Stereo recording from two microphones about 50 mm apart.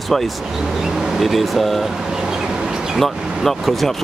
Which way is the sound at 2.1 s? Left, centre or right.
Centre.